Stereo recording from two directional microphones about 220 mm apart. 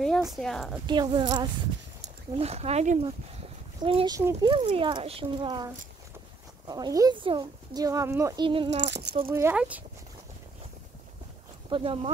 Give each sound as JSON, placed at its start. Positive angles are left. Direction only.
{"t": 0.0, "sound": "speech", "side_deg": 0}
{"t": 0.8, "sound": "speech", "side_deg": -20}
{"t": 6.7, "sound": "speech", "side_deg": -15}
{"t": 8.8, "sound": "speech", "side_deg": -50}
{"t": 9.3, "sound": "speech", "side_deg": -10}
{"t": 11.7, "sound": "speech", "side_deg": -25}